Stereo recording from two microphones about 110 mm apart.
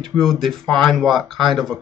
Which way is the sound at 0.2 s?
5° left (ahead or behind).